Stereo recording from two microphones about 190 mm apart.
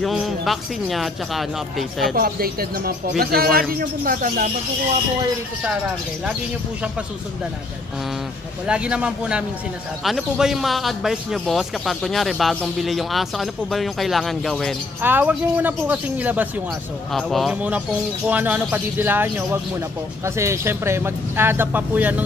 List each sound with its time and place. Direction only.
0.0 s a man's voice: centre (ahead or behind)
2.1 s speech: 50° right (ahead or behind)
8.6 s a man's voice: 5° right (ahead or behind)
15.0 s a man's voice: 10° right (ahead or behind)